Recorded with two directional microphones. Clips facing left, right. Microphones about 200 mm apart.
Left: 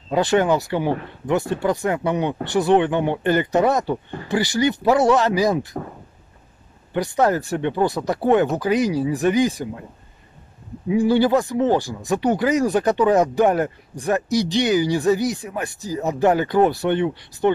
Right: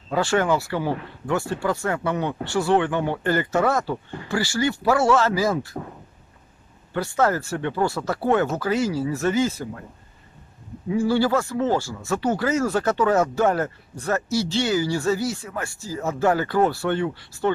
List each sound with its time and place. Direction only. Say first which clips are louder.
0.1 s speech: left 3 dB; 20° left (ahead or behind)
6.9 s speech: left 3 dB; 15° left (ahead or behind)
10.9 s speech: left 4 dB; 20° left (ahead or behind)